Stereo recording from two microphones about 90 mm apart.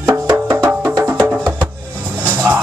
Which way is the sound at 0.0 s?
35° right (ahead or behind).